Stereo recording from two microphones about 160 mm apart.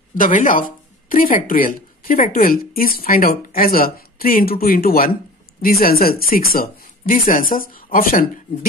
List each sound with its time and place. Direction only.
0.1 s speech: 55° left (ahead or behind)